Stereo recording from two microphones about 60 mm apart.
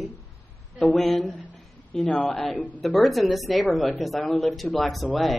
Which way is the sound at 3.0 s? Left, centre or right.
Centre.